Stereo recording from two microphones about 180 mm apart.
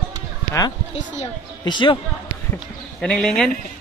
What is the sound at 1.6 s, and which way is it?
Speech, 25° left (ahead or behind).